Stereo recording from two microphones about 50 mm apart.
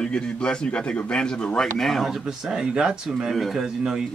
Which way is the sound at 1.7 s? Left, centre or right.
Centre.